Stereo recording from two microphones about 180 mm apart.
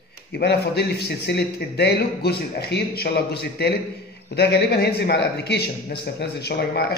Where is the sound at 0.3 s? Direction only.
65° left (ahead or behind).